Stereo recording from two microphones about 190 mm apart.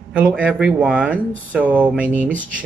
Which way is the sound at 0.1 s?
5° right (ahead or behind).